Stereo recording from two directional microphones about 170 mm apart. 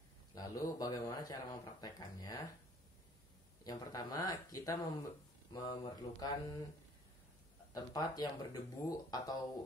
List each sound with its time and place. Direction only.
0.3 s speech: 20° left (ahead or behind)
3.6 s speech: 20° left (ahead or behind)
7.7 s speech: 25° left (ahead or behind)